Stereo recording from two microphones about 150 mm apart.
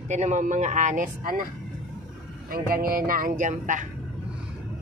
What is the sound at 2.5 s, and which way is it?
Speech, 75° right (ahead or behind).